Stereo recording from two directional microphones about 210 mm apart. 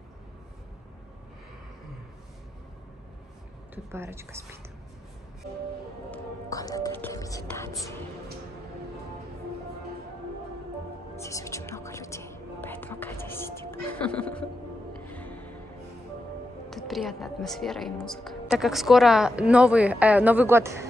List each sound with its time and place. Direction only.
3.7 s a woman's voice: 10° right (ahead or behind)
6.1 s music: 15° left (ahead or behind)
11.2 s speech: 15° left (ahead or behind)
15.0 s music: 5° left (ahead or behind)
16.7 s a woman's voice: centre (ahead or behind)